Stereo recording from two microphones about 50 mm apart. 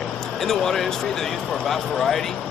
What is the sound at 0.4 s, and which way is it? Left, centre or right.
Speech, centre.